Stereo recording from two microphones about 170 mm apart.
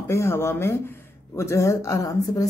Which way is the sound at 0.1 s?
15° left (ahead or behind).